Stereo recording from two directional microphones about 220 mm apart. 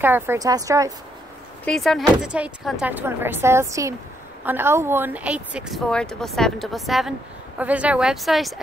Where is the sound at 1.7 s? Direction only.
Centre (ahead or behind).